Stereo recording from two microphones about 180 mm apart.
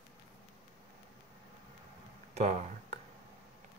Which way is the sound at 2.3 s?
35° right (ahead or behind).